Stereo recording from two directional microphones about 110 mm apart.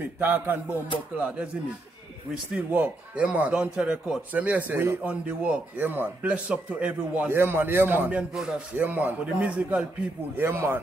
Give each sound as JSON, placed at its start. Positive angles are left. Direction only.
{"t": 0.0, "sound": "a man's voice", "side_deg": -20}
{"t": 2.5, "sound": "a man's voice", "side_deg": -10}
{"t": 10.3, "sound": "a man's voice", "side_deg": -20}